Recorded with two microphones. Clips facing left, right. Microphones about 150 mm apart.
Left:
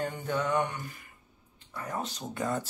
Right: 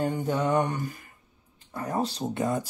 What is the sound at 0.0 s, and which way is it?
Mantra, 35° right (ahead or behind).